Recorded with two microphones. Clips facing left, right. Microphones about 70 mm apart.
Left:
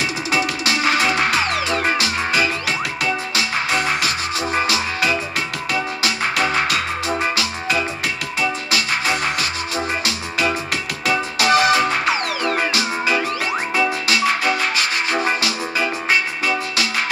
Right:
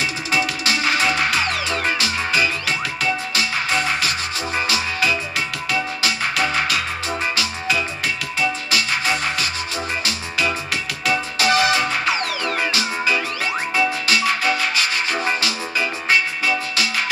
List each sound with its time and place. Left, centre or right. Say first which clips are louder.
0.3 s music: left 1 dB; centre
6.4 s music: left 2 dB; left
9.0 s music: left 1 dB; centre
11.4 s music: left 3 dB; centre